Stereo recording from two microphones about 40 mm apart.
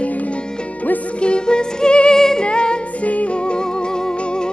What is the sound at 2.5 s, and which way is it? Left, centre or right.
Music, left.